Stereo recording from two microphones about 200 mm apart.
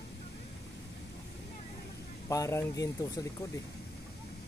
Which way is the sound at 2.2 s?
15° left (ahead or behind).